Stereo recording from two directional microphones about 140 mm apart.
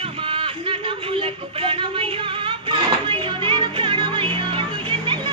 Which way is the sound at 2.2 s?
40° right (ahead or behind).